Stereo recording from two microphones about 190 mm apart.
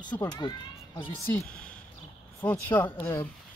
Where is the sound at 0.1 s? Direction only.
15° left (ahead or behind).